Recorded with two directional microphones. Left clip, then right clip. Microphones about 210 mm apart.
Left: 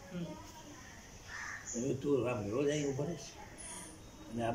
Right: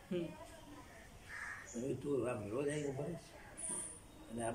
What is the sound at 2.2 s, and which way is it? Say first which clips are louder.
Speech: left 5 dB; centre (ahead or behind).